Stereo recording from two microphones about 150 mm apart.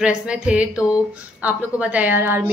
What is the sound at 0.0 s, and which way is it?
A woman's voice, 5° right (ahead or behind).